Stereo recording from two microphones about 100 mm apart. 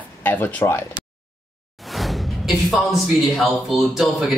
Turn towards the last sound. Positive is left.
turn(degrees=0)  # may be behind; listen again after turning